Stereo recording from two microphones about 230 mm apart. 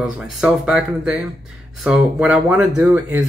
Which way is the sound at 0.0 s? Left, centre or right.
Centre.